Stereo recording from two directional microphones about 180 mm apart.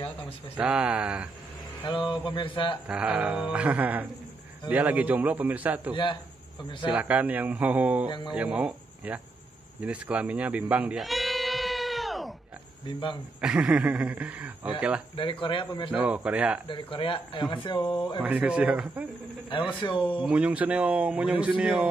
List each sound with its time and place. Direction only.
0.6 s speech: 5° right (ahead or behind)
1.8 s speech: 25° left (ahead or behind)
2.9 s speech: 5° right (ahead or behind)
9.8 s bleat: 5° right (ahead or behind)
12.8 s speech: 25° left (ahead or behind)
13.4 s speech: 5° right (ahead or behind)
15.1 s speech: 25° left (ahead or behind)
15.9 s speech: 5° right (ahead or behind)
16.6 s speech: 30° left (ahead or behind)
18.2 s speech: 5° right (ahead or behind)
19.8 s speech: 20° left (ahead or behind)
20.2 s speech: 5° right (ahead or behind)